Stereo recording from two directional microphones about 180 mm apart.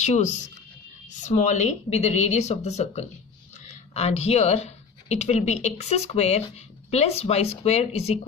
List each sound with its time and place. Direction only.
0.0 s speech: 40° left (ahead or behind)